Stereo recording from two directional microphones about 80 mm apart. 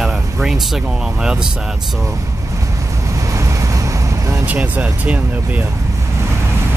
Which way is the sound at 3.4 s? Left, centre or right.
Right.